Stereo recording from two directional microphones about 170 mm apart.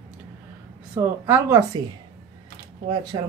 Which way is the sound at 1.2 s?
15° right (ahead or behind).